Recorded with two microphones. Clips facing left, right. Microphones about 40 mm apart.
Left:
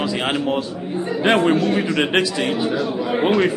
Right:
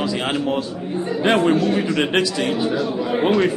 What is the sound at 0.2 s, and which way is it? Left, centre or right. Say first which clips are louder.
A man's voice: left 1 dB; centre.